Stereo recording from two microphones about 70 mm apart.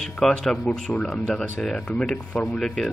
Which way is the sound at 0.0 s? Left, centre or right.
Centre.